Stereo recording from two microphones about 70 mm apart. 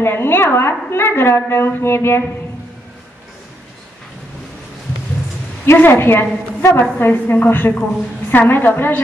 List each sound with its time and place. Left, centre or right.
0.0 s a woman's voice: left
5.8 s a woman's voice: left